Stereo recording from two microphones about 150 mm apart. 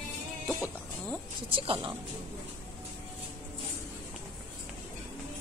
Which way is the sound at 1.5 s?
35° right (ahead or behind).